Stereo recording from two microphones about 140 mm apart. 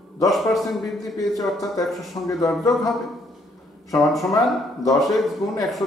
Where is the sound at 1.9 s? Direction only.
Centre (ahead or behind).